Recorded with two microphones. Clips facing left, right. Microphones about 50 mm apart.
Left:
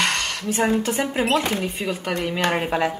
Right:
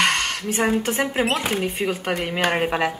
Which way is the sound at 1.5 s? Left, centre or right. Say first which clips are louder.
Right 2 dB; right.